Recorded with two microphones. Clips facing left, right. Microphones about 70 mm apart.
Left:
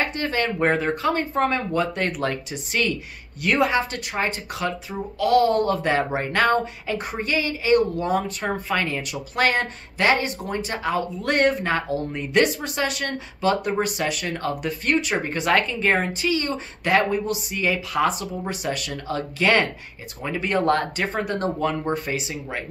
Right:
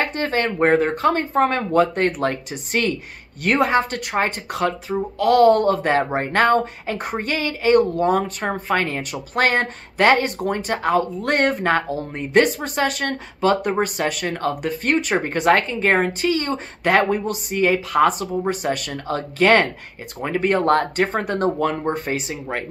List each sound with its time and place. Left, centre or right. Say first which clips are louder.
0.0 s speech: right 3 dB; right